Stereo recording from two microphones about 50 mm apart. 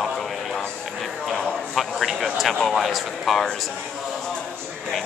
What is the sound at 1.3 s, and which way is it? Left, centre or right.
Speech, centre.